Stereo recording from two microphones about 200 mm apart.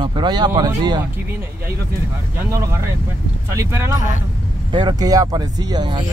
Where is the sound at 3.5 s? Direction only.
10° right (ahead or behind).